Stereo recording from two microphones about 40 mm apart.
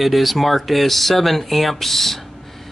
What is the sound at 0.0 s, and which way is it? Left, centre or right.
Speech, centre.